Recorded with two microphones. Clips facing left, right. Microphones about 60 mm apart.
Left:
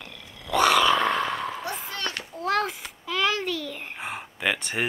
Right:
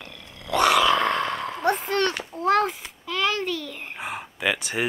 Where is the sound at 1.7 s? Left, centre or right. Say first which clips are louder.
Right 9 dB; right.